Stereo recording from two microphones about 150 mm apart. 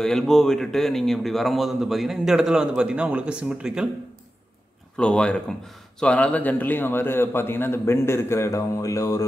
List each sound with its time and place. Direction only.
0.0 s a man's voice: 5° left (ahead or behind)
4.9 s a man's voice: 5° left (ahead or behind); by 9.2 s 20° left (ahead or behind)